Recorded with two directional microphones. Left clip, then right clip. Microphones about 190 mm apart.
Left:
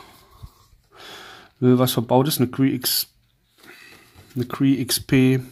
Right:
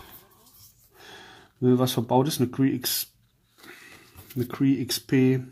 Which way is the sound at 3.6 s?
10° left (ahead or behind).